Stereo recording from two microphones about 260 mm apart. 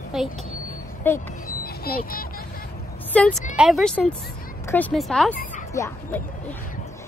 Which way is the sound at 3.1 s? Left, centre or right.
Centre.